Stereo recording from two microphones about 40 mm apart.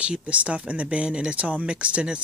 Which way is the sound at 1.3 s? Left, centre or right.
Right.